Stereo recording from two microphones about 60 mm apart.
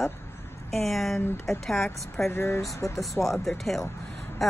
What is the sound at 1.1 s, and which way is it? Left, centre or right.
Speech, left.